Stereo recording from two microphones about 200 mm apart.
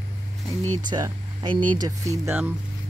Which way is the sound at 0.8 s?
20° right (ahead or behind).